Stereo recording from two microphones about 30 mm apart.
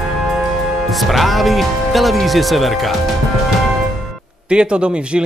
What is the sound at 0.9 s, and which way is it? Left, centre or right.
Speech, centre.